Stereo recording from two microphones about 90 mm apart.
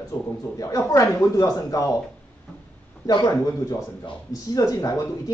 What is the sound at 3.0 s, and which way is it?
Speech, 50° left (ahead or behind).